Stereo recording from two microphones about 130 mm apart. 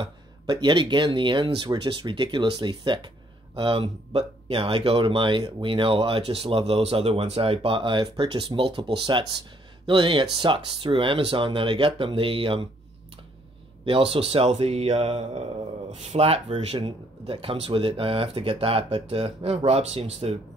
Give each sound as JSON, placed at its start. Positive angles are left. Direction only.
{"t": 0.0, "sound": "speech", "side_deg": -35}
{"t": 13.8, "sound": "speech", "side_deg": -45}